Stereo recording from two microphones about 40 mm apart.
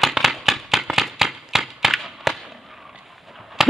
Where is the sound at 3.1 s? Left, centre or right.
Centre.